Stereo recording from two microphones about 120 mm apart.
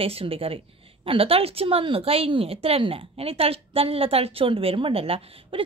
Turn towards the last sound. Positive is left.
turn(degrees=-50)  # may be behind; listen again after turning